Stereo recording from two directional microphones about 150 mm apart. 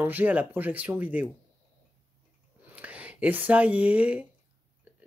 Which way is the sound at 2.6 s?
10° right (ahead or behind).